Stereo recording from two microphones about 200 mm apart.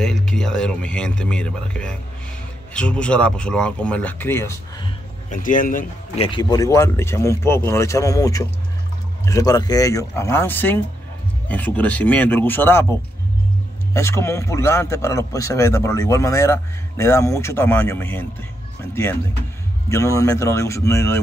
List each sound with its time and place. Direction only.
0.0 s speech: centre (ahead or behind)
5.3 s speech: 40° left (ahead or behind)
6.1 s speech: 25° left (ahead or behind); by 18.2 s 10° left (ahead or behind)
19.9 s speech: 15° left (ahead or behind)